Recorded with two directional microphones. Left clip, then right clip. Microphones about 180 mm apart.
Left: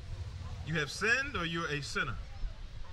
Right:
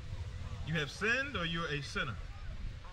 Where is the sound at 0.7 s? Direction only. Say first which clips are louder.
Left 3 dB; 35° left (ahead or behind).